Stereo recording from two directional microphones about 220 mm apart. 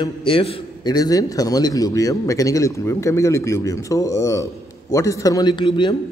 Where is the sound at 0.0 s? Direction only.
25° left (ahead or behind).